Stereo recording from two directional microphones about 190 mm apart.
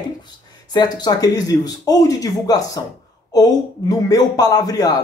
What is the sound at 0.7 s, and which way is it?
A man's voice, 20° left (ahead or behind).